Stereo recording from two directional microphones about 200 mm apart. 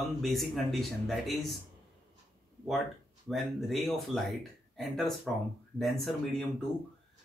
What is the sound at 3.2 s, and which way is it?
Speech, centre (ahead or behind).